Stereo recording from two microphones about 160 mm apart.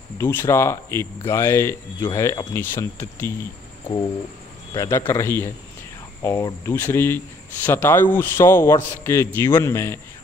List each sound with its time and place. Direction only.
0.2 s a man's voice: 15° left (ahead or behind)
4.7 s a man's voice: 20° left (ahead or behind)